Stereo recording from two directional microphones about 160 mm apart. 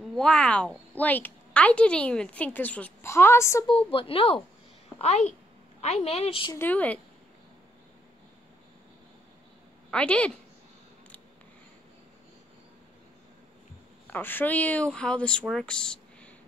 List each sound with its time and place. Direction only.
0.0 s a woman's voice: 5° left (ahead or behind)
3.9 s a woman's voice: 35° left (ahead or behind)
6.5 s a woman's voice: 10° left (ahead or behind)
9.8 s a woman's voice: 5° left (ahead or behind)
14.1 s a woman's voice: 10° left (ahead or behind)